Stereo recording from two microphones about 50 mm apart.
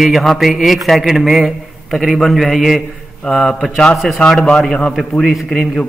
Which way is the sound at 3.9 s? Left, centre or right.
Centre.